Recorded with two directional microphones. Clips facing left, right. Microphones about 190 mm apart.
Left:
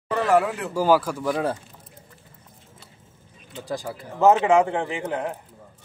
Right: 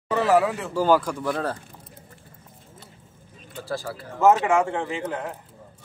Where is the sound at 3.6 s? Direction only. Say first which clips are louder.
Even; 15° left (ahead or behind).